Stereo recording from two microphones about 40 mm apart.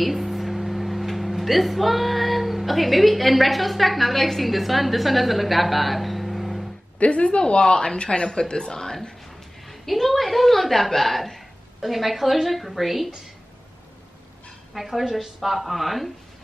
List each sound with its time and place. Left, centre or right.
0.0 s speech: centre
7.0 s speech: left
9.7 s a woman's voice: centre
14.7 s speech: centre